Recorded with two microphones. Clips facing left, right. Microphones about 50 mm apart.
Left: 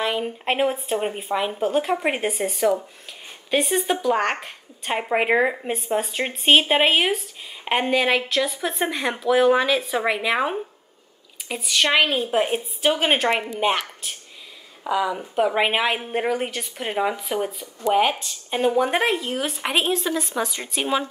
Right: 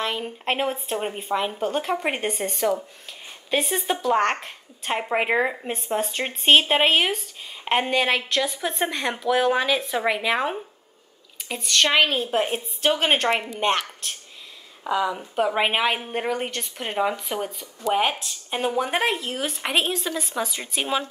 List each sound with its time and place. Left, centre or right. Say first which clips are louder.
0.0 s a woman's voice: left 3 dB; centre